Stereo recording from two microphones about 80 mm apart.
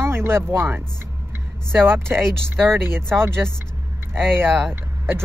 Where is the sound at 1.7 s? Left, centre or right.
Right.